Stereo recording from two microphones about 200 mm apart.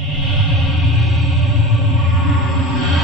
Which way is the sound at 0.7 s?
Centre (ahead or behind).